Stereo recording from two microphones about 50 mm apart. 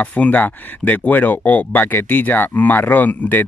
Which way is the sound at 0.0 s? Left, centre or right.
Left.